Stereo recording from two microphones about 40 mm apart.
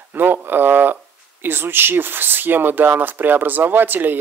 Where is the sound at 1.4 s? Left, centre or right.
Right.